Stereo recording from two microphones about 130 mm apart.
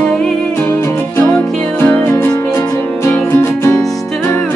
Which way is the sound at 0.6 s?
10° left (ahead or behind).